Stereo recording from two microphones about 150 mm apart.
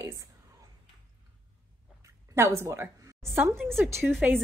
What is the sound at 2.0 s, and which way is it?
A woman's voice, 20° right (ahead or behind).